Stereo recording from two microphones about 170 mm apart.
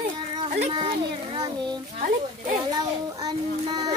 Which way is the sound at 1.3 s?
25° right (ahead or behind).